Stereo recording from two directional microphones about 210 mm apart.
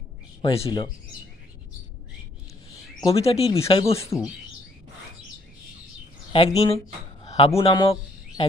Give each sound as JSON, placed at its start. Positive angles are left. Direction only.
{"t": 0.4, "sound": "speech", "side_deg": 20}
{"t": 3.0, "sound": "speech", "side_deg": 25}
{"t": 6.3, "sound": "speech", "side_deg": 30}
{"t": 7.2, "sound": "a sound", "side_deg": 25}
{"t": 7.6, "sound": "speech", "side_deg": 25}